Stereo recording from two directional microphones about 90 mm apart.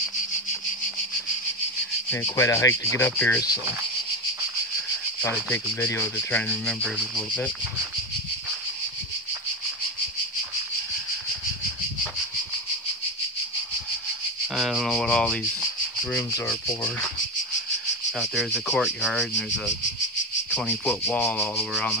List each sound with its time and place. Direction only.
2.3 s speech: 35° left (ahead or behind)
3.3 s rub: 45° left (ahead or behind)
5.2 s speech: 30° left (ahead or behind)
6.1 s speech: 15° left (ahead or behind)
14.5 s rub: 5° right (ahead or behind)
18.2 s speech: centre (ahead or behind)
20.9 s speech: 20° left (ahead or behind)
21.4 s speech: 5° left (ahead or behind)